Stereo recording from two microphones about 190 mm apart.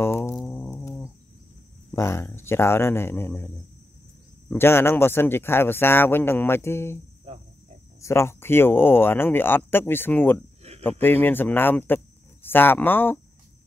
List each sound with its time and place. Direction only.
0.0 s insect: 15° left (ahead or behind)
1.9 s speech: 15° left (ahead or behind)
7.3 s cricket: 30° right (ahead or behind)
8.0 s speech: 15° left (ahead or behind)